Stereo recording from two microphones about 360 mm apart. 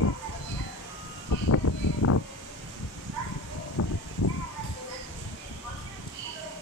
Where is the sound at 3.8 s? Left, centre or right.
Left.